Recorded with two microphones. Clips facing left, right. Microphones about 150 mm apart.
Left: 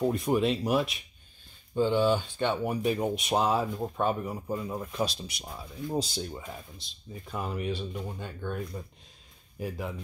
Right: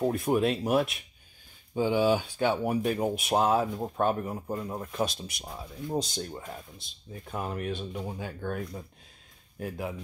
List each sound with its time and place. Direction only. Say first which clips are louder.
0.0 s speech: even; 5° right (ahead or behind)
1.8 s speech: even; 10° right (ahead or behind)
5.9 s speech: even; 5° left (ahead or behind)